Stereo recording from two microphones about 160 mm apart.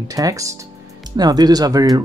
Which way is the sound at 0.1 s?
20° right (ahead or behind).